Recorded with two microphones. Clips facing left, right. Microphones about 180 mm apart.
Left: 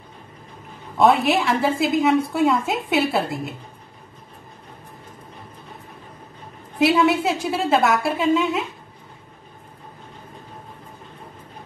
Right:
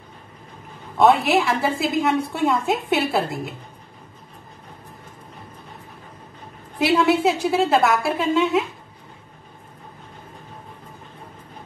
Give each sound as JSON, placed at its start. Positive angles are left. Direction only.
{"t": 0.9, "sound": "a woman's voice", "side_deg": 0}
{"t": 6.8, "sound": "a woman's voice", "side_deg": 0}